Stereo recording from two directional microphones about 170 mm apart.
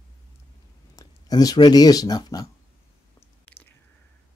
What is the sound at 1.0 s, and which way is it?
Speech, 20° left (ahead or behind).